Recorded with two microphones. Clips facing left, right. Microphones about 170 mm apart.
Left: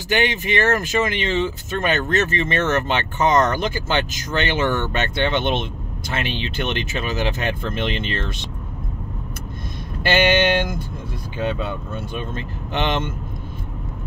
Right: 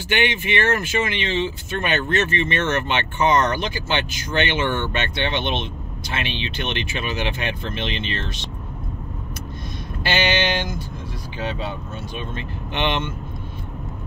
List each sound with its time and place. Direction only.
0.1 s speech: 40° left (ahead or behind)
10.0 s speech: 50° left (ahead or behind)